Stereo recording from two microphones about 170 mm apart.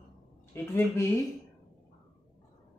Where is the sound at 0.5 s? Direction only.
15° left (ahead or behind).